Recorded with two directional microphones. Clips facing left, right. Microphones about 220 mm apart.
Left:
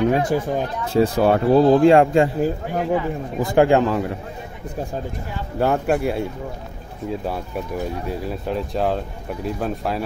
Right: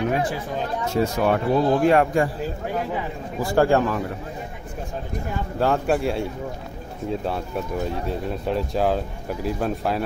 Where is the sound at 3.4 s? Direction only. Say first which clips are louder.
Left 3 dB; 20° left (ahead or behind).